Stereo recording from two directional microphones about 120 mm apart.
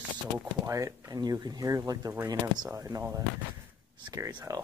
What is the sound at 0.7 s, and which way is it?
Speech, 25° right (ahead or behind).